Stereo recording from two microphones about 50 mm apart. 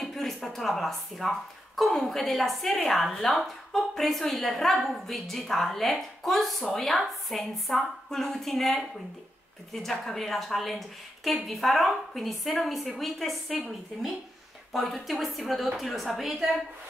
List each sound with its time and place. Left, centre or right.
0.0 s a woman's voice: centre